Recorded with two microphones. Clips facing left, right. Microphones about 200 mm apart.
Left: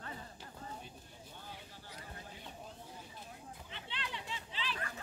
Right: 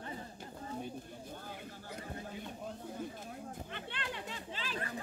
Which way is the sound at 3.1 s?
50° right (ahead or behind).